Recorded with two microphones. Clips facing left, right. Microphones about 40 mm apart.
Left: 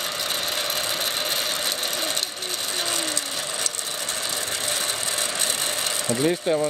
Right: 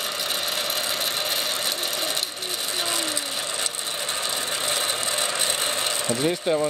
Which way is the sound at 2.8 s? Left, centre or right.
Centre.